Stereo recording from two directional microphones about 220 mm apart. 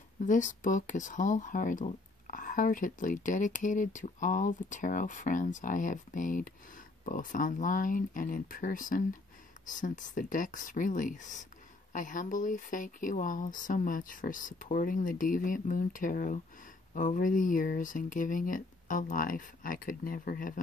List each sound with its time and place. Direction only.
0.2 s speech: 35° left (ahead or behind)